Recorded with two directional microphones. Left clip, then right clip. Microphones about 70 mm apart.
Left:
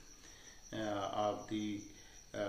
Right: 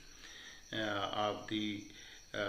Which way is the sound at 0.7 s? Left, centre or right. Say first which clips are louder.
Right 2 dB; centre.